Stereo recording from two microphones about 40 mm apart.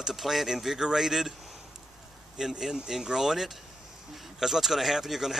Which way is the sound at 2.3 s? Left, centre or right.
Centre.